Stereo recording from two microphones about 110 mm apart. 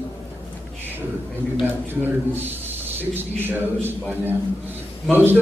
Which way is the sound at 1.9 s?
20° right (ahead or behind).